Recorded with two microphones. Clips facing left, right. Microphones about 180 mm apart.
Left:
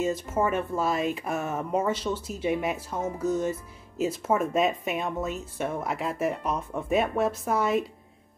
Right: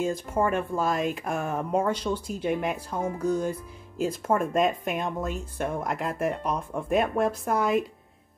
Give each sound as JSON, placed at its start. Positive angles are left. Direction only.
{"t": 0.0, "sound": "speech", "side_deg": 5}